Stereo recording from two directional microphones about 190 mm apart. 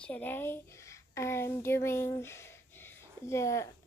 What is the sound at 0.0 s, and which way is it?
A woman's voice, 10° left (ahead or behind).